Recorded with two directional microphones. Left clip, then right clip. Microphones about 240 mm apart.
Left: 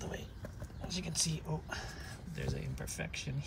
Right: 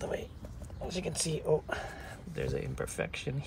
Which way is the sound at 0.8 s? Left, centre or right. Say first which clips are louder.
Right 2 dB; left.